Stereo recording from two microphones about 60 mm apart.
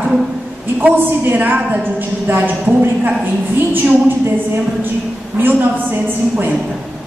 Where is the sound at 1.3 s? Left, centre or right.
Right.